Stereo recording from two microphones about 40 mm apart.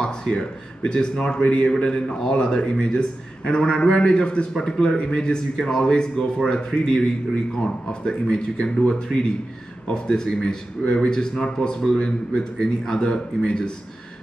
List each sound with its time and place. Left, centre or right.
0.0 s a man's voice: left
5.6 s a man's voice: centre; by 13.7 s left